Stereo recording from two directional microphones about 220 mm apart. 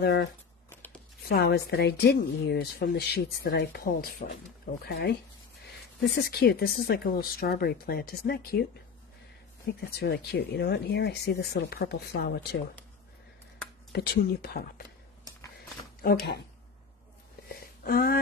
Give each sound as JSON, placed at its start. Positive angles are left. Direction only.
{"t": 0.0, "sound": "a woman's voice", "side_deg": 50}
{"t": 0.7, "sound": "tearing", "side_deg": 10}
{"t": 1.3, "sound": "a woman's voice", "side_deg": 45}
{"t": 9.8, "sound": "a woman's voice", "side_deg": 45}
{"t": 13.9, "sound": "a woman's voice", "side_deg": 45}
{"t": 16.0, "sound": "a woman's voice", "side_deg": 45}
{"t": 17.5, "sound": "a sound", "side_deg": 45}